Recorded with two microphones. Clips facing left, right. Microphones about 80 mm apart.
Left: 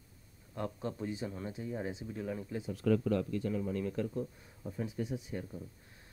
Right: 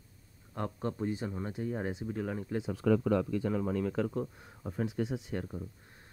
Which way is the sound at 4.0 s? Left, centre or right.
Right.